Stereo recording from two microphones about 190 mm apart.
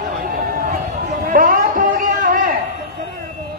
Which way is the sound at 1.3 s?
45° right (ahead or behind).